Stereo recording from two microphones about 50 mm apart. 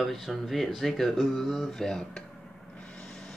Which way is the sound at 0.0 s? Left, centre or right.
Centre.